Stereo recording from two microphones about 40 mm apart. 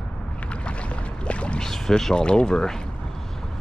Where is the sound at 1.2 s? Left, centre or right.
Left.